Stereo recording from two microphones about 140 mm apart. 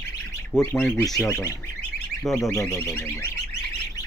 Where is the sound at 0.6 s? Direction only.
20° left (ahead or behind).